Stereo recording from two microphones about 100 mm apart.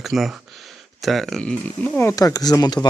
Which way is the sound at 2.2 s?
40° left (ahead or behind).